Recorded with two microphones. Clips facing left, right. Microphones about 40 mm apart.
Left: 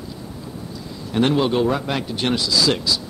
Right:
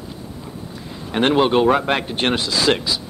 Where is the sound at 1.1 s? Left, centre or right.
Right.